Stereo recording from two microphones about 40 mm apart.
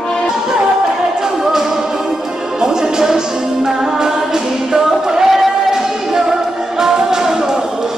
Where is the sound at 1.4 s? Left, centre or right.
Centre.